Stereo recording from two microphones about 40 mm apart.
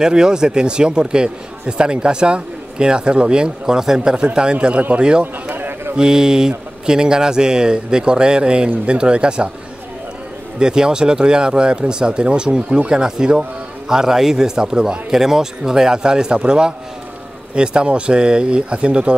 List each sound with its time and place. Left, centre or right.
0.0 s a man's voice: centre
5.2 s a sound: right
5.9 s a man's voice: right
10.6 s a man's voice: centre